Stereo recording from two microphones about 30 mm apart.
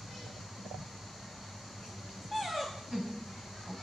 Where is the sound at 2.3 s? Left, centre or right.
Centre.